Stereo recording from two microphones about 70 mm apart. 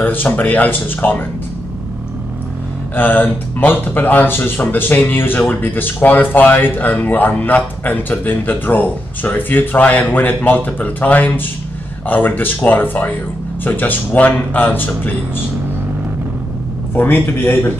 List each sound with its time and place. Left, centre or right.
0.0 s speech: left
3.0 s speech: left
16.9 s a man's voice: left